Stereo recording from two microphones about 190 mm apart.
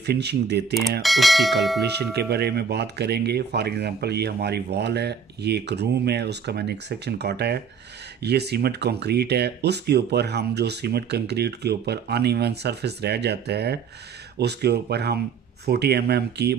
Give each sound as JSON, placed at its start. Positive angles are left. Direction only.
{"t": 0.0, "sound": "speech", "side_deg": -60}
{"t": 1.0, "sound": "speech", "side_deg": 0}
{"t": 1.8, "sound": "speech", "side_deg": -60}